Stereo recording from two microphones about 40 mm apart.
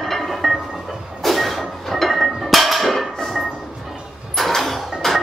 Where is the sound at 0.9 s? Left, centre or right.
Centre.